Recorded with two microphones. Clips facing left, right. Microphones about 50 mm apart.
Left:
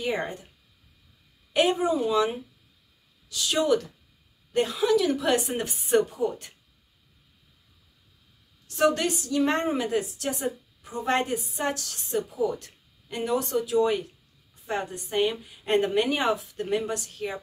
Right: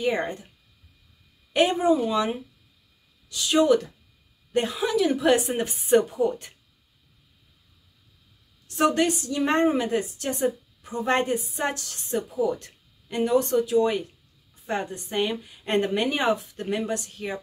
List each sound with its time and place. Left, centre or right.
0.0 s a woman's voice: centre
1.5 s a woman's voice: centre
8.7 s a woman's voice: centre